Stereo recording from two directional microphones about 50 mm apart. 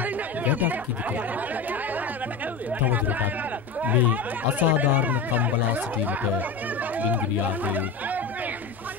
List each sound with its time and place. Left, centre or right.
0.0 s chatter: right
2.8 s speech: right
7.6 s speech: right